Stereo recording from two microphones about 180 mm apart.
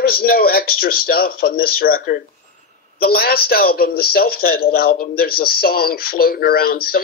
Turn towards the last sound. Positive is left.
turn(degrees=55)  # may be behind; listen again after turning